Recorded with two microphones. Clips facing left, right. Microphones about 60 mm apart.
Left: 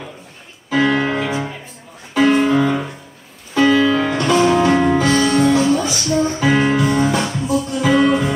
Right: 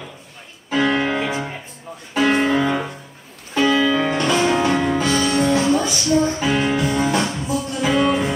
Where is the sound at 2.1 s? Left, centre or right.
Right.